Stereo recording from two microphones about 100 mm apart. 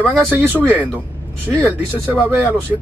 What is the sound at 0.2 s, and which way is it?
Speech, 20° right (ahead or behind).